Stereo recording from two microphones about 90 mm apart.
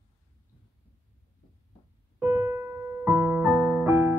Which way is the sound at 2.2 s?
25° right (ahead or behind).